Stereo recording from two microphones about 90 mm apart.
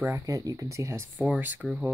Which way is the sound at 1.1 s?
20° right (ahead or behind).